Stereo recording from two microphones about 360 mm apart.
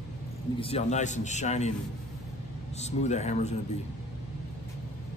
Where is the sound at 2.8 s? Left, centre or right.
Centre.